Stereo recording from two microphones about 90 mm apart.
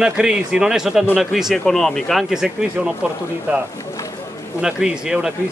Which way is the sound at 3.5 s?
15° right (ahead or behind).